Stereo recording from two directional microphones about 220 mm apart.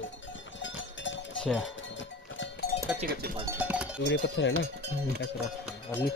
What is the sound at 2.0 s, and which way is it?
Music, 55° left (ahead or behind).